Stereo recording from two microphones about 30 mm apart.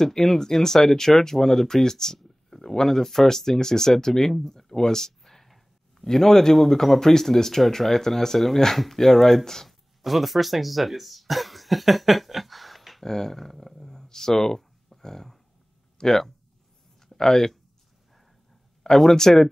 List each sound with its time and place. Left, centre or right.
0.0 s speech: centre
2.1 s a sound: centre
2.7 s speech: centre
9.7 s throat clearing: centre
13.0 s speech: centre
18.8 s speech: centre